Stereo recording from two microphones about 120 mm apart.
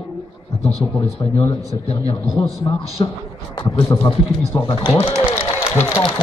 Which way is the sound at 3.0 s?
40° left (ahead or behind).